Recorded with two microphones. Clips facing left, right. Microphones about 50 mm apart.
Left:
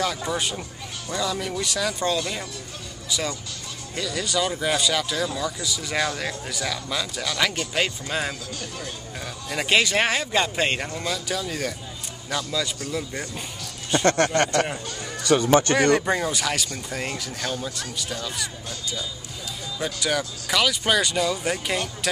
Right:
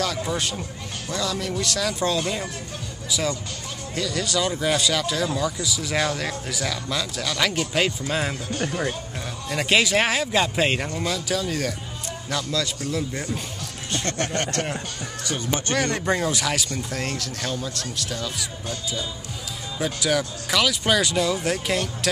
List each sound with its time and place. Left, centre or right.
0.0 s speech: centre
8.5 s speech: right
9.5 s speech: centre
14.0 s speech: left
15.9 s speech: centre
19.8 s speech: centre